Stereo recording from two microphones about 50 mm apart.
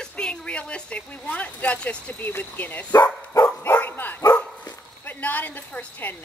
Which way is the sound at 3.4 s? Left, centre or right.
Left.